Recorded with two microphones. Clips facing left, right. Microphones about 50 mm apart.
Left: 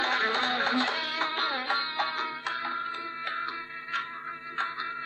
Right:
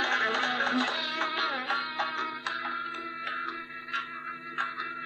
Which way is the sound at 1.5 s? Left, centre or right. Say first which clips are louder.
Left 1 dB; left.